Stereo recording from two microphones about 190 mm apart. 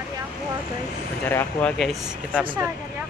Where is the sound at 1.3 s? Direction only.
10° left (ahead or behind).